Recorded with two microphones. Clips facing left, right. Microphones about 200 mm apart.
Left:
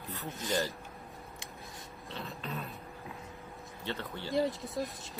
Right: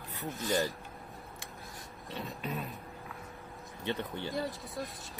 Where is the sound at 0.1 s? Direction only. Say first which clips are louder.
Right 2 dB; 15° right (ahead or behind).